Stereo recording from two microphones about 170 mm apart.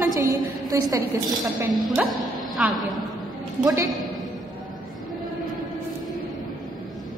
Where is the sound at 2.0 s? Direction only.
Centre (ahead or behind).